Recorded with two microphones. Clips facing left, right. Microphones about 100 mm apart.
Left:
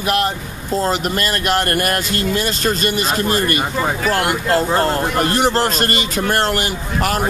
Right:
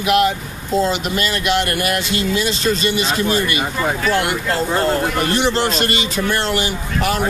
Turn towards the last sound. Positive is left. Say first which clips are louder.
# even
turn(degrees=45)  # may be behind; listen again after turning